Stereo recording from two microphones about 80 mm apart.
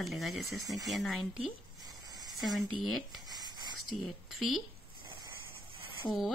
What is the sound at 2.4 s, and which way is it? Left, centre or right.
Speech, centre.